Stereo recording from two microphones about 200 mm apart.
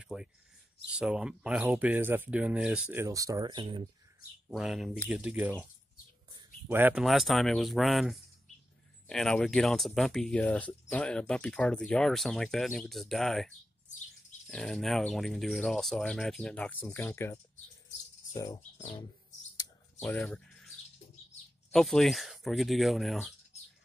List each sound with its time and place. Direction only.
0.0 s speech: 5° right (ahead or behind); by 3.8 s 25° right (ahead or behind)
4.5 s speech: centre (ahead or behind)
6.7 s speech: 10° right (ahead or behind); by 19.0 s 25° left (ahead or behind)
20.0 s speech: 5° left (ahead or behind)
21.7 s speech: centre (ahead or behind)